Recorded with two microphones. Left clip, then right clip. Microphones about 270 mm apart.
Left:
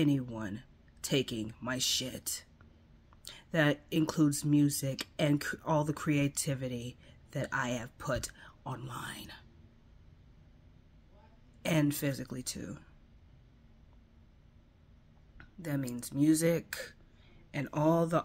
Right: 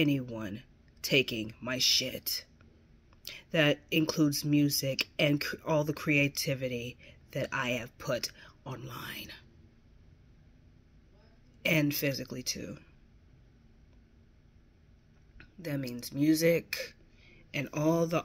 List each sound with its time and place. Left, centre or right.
0.0 s speech: centre
11.6 s speech: centre
15.7 s speech: centre